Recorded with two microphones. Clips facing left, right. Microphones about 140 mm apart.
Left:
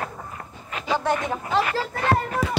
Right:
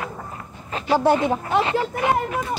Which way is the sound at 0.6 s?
30° right (ahead or behind).